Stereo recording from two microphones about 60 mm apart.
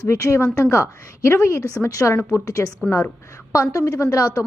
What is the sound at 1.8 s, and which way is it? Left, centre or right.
Speech, left.